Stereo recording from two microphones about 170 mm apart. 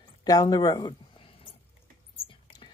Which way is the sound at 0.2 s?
20° left (ahead or behind).